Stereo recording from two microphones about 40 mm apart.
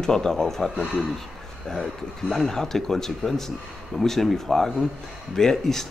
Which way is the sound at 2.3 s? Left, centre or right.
Centre.